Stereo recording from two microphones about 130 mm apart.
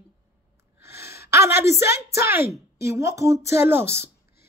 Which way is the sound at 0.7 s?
20° right (ahead or behind).